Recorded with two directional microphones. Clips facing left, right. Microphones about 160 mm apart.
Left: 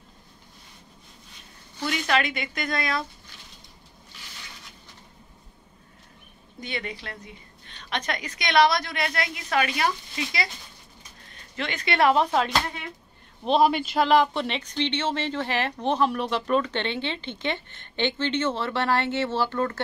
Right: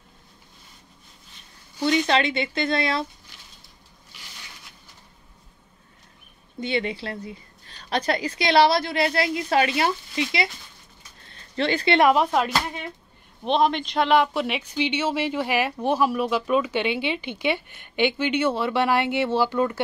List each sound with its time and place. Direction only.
1.8 s a woman's voice: 25° right (ahead or behind)
6.6 s a woman's voice: 30° right (ahead or behind)
11.5 s speech: 30° right (ahead or behind)
12.0 s speech: 15° right (ahead or behind)